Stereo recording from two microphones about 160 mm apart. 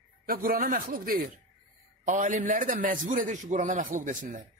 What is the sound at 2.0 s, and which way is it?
A man's voice, 55° right (ahead or behind).